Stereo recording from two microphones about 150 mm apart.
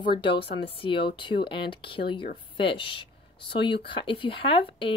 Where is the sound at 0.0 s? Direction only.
35° left (ahead or behind).